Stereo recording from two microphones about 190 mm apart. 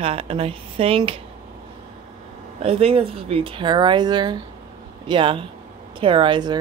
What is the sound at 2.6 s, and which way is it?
Speech, 30° right (ahead or behind).